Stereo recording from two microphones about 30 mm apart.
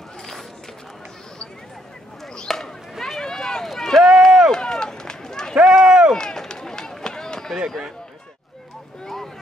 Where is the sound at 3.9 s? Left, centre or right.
Centre.